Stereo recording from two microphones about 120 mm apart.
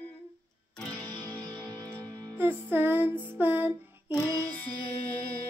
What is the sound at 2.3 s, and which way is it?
Music, 20° right (ahead or behind).